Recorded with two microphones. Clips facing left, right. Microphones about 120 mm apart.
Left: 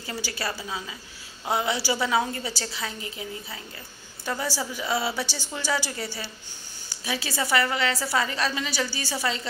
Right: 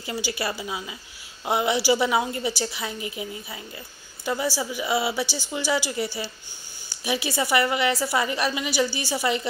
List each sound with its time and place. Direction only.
0.3 s a woman's voice: 10° right (ahead or behind)
4.3 s a woman's voice: 10° right (ahead or behind)